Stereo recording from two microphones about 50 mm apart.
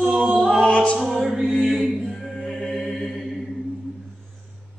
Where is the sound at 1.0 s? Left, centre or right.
Centre.